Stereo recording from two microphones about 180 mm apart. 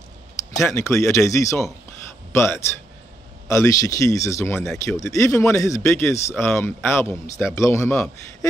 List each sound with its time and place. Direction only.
0.6 s speech: 15° left (ahead or behind)